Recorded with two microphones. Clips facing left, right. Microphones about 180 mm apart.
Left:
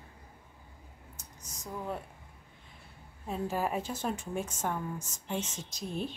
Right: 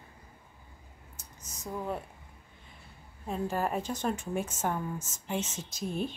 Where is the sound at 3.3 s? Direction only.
5° left (ahead or behind).